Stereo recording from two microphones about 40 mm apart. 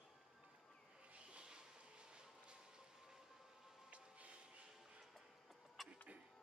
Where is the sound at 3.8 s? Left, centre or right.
Right.